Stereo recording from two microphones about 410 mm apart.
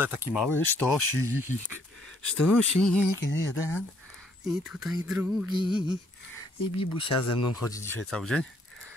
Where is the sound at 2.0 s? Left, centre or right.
Centre.